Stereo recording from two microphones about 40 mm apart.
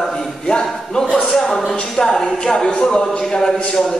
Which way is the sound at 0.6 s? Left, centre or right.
Centre.